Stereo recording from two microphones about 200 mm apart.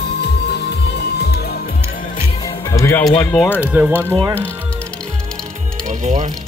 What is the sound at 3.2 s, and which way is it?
Speech, 5° left (ahead or behind).